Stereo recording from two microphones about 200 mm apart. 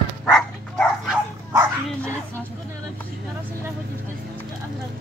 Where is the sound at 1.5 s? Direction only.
15° right (ahead or behind).